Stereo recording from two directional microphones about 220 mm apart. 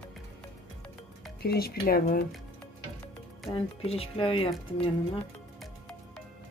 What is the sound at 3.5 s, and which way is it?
Speech, 25° left (ahead or behind).